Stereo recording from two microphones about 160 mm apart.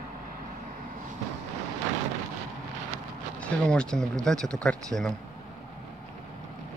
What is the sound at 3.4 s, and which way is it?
Speech, 5° left (ahead or behind).